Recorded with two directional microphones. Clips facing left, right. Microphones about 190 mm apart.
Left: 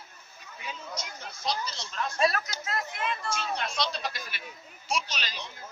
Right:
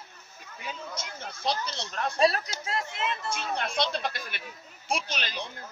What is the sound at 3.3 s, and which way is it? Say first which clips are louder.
Speech: right 1 dB; 55° right (ahead or behind).